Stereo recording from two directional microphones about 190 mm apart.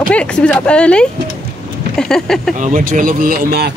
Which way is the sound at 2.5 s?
45° right (ahead or behind).